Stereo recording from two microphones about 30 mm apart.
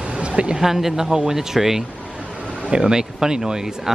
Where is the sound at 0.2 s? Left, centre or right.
Right.